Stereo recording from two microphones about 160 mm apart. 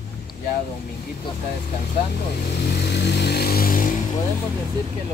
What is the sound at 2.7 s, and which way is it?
Vehicle, 90° left.